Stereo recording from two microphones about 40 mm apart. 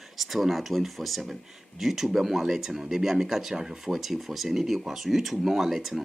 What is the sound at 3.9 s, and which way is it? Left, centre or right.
Speech, centre.